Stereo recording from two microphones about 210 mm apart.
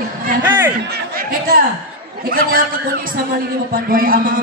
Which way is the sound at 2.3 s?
45° right (ahead or behind).